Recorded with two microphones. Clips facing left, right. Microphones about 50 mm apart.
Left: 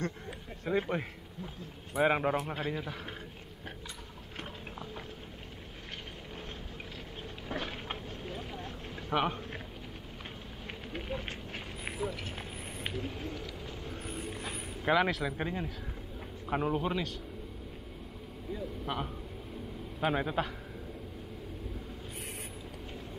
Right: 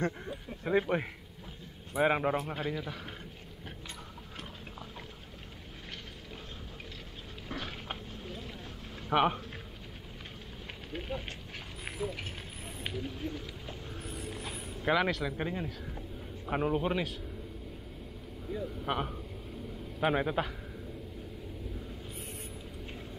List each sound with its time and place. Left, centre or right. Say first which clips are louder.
0.7 s a man's voice: right 2 dB; centre
7.5 s vehicle: left 2 dB; centre
9.1 s a man's voice: right 4 dB; centre
10.9 s speech: even; centre
11.8 s a sound: even; centre
14.3 s a sound: left 1 dB; centre
16.4 s a man's voice: right 1 dB; centre
18.5 s a man's voice: right 2 dB; centre
18.9 s speech: right 3 dB; centre
20.0 s a man's voice: right 1 dB; centre